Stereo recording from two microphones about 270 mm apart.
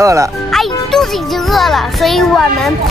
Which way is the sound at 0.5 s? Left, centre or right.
Centre.